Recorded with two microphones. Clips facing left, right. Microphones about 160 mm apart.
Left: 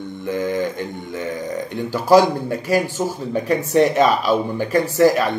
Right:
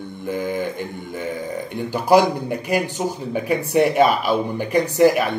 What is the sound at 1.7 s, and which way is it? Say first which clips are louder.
Speech: left 2 dB; 15° right (ahead or behind).